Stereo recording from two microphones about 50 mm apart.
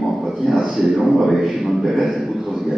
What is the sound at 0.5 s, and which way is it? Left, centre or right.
Speech, centre.